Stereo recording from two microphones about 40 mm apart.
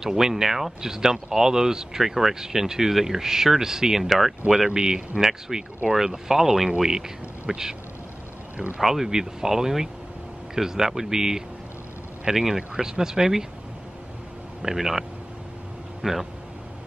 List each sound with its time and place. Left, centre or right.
0.0 s speech: centre
8.8 s speech: centre
14.6 s speech: centre